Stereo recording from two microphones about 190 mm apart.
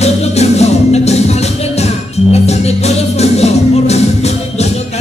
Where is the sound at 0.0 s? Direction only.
35° left (ahead or behind).